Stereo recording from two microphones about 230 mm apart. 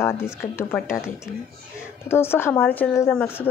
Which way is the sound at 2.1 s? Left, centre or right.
Centre.